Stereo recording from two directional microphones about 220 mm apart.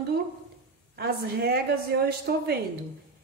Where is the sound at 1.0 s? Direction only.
45° right (ahead or behind).